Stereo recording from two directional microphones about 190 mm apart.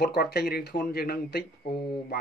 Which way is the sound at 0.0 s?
60° left (ahead or behind).